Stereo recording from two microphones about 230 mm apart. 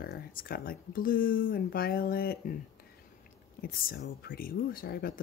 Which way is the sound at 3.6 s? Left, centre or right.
Left.